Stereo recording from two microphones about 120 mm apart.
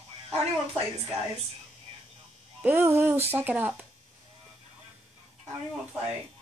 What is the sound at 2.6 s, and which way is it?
Speech, 15° right (ahead or behind).